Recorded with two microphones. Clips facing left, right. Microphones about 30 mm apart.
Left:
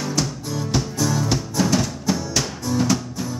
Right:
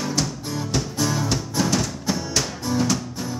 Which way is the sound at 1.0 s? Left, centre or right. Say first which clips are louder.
Left 1 dB; centre.